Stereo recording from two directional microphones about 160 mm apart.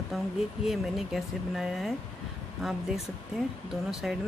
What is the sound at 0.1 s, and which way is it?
Speech, centre (ahead or behind).